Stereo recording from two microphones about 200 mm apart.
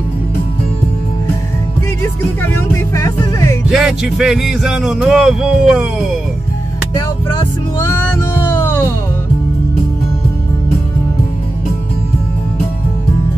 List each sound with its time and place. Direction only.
2.4 s music: 15° left (ahead or behind)
3.6 s music: 5° right (ahead or behind)
7.3 s speech: 15° left (ahead or behind)